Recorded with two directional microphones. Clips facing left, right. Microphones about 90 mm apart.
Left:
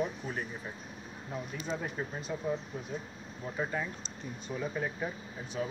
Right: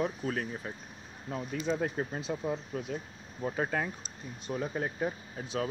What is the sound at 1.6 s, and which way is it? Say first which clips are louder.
Speech: right 6 dB; 65° right (ahead or behind).